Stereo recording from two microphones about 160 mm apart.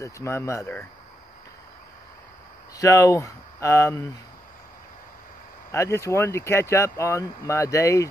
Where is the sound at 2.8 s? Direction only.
20° left (ahead or behind).